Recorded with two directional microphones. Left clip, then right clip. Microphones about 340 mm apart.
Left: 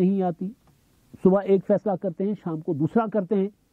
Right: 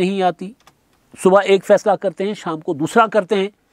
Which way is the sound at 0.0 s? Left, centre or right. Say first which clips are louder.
Right 8 dB; centre.